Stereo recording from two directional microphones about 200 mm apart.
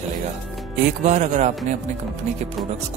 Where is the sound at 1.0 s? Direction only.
35° right (ahead or behind).